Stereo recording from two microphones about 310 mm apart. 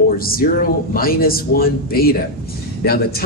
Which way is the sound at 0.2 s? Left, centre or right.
Left.